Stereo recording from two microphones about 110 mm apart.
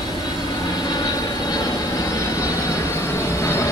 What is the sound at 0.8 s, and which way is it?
Vehicle, 40° left (ahead or behind).